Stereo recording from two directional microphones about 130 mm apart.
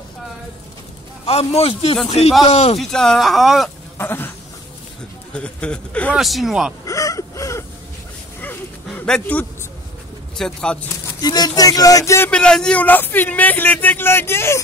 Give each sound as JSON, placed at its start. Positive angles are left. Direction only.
{"t": 1.2, "sound": "a man's voice", "side_deg": 50}
{"t": 2.8, "sound": "speech", "side_deg": 5}
{"t": 4.0, "sound": "speech", "side_deg": 15}
{"t": 5.3, "sound": "speech", "side_deg": 10}
{"t": 6.1, "sound": "speech", "side_deg": 0}
{"t": 6.9, "sound": "a sound", "side_deg": 25}
{"t": 8.4, "sound": "dog", "side_deg": 15}
{"t": 10.3, "sound": "speech", "side_deg": 5}
{"t": 11.1, "sound": "speech", "side_deg": 30}
{"t": 12.3, "sound": "speech", "side_deg": 5}